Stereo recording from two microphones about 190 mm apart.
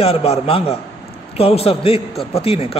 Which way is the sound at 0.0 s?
30° left (ahead or behind).